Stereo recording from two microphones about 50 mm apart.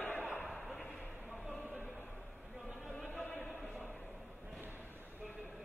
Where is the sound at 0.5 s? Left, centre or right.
Centre.